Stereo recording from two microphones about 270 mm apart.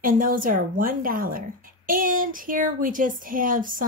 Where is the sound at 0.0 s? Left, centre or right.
Right.